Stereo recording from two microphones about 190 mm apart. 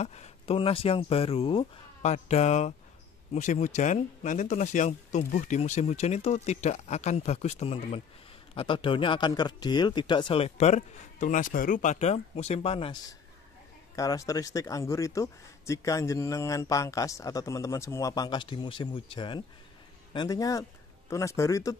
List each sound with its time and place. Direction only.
0.0 s speech: 35° left (ahead or behind)
13.9 s a man's voice: 15° left (ahead or behind)